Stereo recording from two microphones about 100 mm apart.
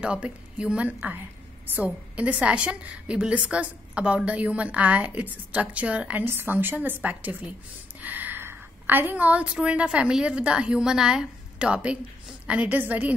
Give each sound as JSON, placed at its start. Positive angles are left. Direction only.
{"t": 0.0, "sound": "a woman's voice", "side_deg": -10}